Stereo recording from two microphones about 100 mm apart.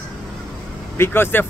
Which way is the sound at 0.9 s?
20° left (ahead or behind).